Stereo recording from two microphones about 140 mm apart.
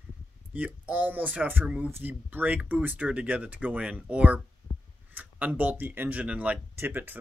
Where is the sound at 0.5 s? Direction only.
10° right (ahead or behind).